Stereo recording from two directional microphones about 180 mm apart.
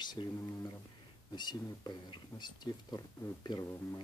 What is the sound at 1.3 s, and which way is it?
Speech, 25° left (ahead or behind).